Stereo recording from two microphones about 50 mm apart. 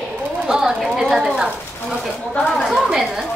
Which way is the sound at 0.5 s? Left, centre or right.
Centre.